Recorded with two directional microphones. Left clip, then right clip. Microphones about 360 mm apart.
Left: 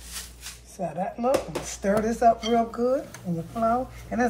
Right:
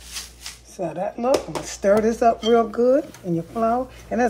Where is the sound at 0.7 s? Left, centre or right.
Right.